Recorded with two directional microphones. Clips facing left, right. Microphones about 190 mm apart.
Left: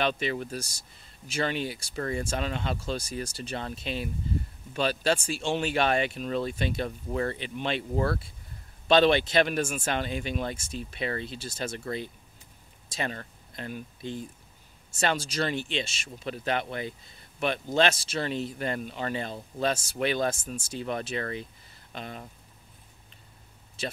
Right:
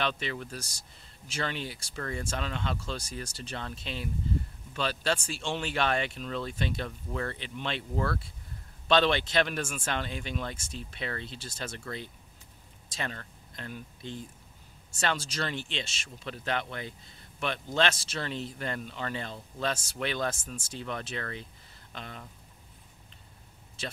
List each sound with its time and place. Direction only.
0.0 s speech: 15° left (ahead or behind)
7.9 s speech: 30° left (ahead or behind)
8.8 s speech: 10° left (ahead or behind)
17.7 s speech: 10° left (ahead or behind)